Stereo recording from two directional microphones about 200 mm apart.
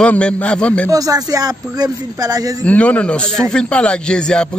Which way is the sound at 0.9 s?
15° right (ahead or behind).